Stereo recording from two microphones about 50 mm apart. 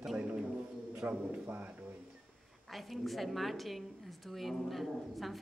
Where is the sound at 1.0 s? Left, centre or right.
Right.